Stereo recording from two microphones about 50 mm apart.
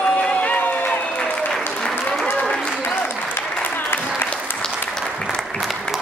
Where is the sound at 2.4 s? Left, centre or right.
Centre.